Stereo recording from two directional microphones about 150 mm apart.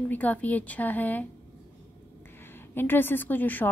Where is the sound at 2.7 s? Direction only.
15° left (ahead or behind).